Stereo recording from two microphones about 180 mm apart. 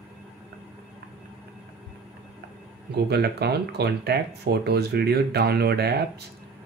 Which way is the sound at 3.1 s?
65° right (ahead or behind).